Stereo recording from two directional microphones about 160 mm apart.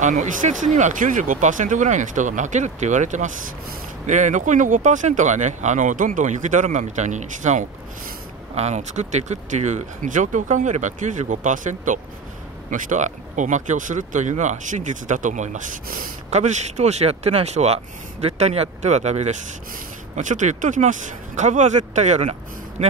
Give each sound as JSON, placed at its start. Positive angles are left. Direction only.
{"t": 0.0, "sound": "speech", "side_deg": -50}